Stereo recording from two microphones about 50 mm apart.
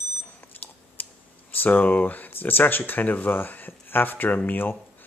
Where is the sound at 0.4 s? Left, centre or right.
Left.